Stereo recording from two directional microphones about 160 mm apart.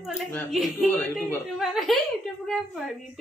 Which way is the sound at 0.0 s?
Centre (ahead or behind).